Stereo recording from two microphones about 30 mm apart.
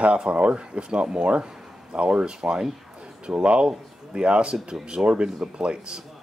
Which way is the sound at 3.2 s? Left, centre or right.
Right.